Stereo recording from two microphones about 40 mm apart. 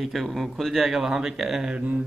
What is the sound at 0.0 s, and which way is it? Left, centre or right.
Speech, centre.